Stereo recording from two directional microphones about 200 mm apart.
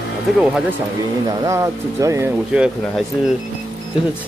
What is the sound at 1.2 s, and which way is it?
Speech, 15° right (ahead or behind).